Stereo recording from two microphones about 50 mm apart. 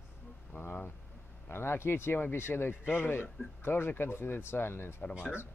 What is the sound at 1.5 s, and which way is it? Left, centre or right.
Speech, left.